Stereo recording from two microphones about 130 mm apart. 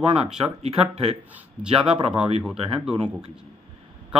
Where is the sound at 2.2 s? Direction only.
55° right (ahead or behind).